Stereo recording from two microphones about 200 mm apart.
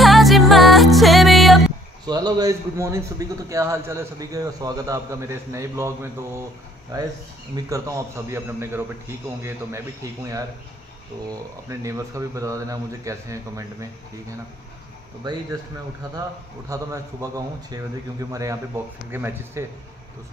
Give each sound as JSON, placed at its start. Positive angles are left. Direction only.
{"t": 0.0, "sound": "music", "side_deg": 0}
{"t": 2.0, "sound": "a man's voice", "side_deg": -20}
{"t": 7.7, "sound": "a man's voice", "side_deg": -15}
{"t": 11.8, "sound": "a man's voice", "side_deg": -15}
{"t": 16.6, "sound": "a man's voice", "side_deg": -15}